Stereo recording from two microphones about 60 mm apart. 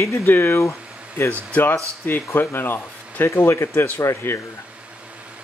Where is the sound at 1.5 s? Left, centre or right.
Left.